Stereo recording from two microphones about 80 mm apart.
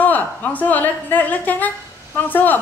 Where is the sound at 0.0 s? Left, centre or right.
Left.